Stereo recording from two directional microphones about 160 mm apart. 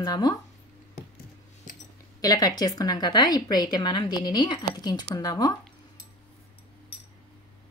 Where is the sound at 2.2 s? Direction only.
25° left (ahead or behind).